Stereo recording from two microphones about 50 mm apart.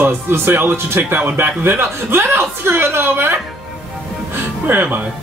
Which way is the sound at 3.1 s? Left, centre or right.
Right.